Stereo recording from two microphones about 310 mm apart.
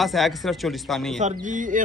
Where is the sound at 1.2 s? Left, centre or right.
Right.